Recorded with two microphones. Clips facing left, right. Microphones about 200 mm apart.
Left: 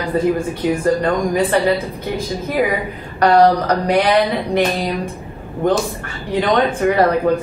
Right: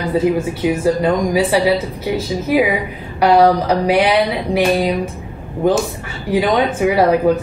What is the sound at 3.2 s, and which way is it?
A woman's voice, 5° right (ahead or behind).